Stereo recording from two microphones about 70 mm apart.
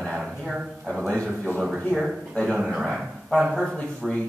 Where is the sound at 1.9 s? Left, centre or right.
Centre.